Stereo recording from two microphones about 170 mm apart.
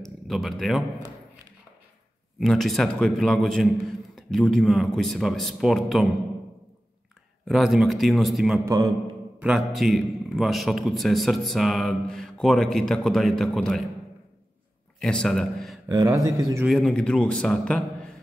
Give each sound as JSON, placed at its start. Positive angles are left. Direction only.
{"t": 0.0, "sound": "speech", "side_deg": 0}
{"t": 2.4, "sound": "a man's voice", "side_deg": 0}
{"t": 7.4, "sound": "a man's voice", "side_deg": 0}
{"t": 8.6, "sound": "speech", "side_deg": -20}
{"t": 9.4, "sound": "a man's voice", "side_deg": -5}
{"t": 15.0, "sound": "a man's voice", "side_deg": 5}
{"t": 15.9, "sound": "speech", "side_deg": -20}
{"t": 16.6, "sound": "a man's voice", "side_deg": 5}